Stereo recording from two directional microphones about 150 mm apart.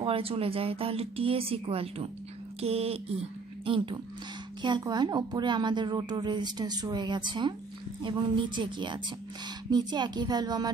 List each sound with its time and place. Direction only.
0.0 s speech: 40° right (ahead or behind)